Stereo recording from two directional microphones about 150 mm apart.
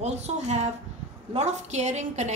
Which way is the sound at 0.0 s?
45° right (ahead or behind).